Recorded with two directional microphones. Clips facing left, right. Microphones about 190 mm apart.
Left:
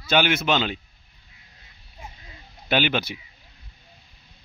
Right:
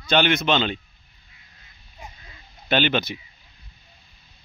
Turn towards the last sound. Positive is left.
turn(degrees=10)  # may be behind; listen again after turning